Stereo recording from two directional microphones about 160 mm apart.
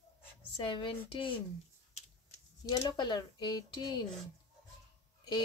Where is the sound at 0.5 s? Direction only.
30° left (ahead or behind).